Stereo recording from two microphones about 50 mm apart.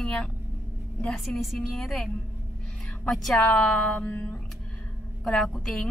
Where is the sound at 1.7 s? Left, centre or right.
Centre.